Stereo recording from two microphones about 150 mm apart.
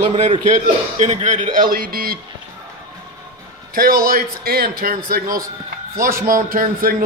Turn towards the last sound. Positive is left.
turn(degrees=-70)  # may be behind; listen again after turning